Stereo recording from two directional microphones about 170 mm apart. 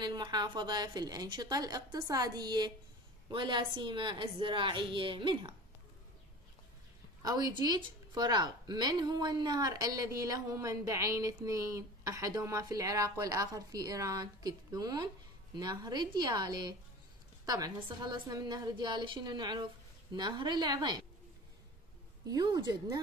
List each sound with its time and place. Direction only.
0.0 s speech: 25° right (ahead or behind)
7.2 s speech: 25° right (ahead or behind)
22.3 s speech: 25° right (ahead or behind)